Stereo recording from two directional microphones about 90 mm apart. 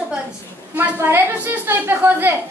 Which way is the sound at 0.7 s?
25° right (ahead or behind).